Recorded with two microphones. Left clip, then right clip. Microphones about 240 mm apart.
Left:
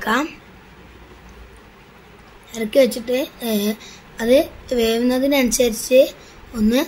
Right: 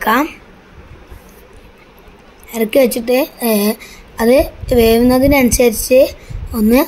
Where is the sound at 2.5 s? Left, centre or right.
Centre.